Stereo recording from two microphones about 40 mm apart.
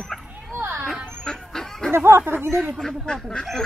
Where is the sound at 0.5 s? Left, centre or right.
Right.